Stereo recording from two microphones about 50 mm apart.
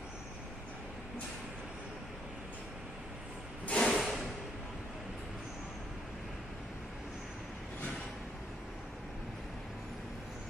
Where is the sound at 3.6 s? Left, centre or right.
Centre.